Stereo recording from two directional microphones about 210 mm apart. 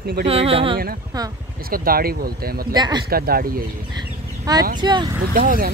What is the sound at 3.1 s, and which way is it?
Speech, 45° right (ahead or behind).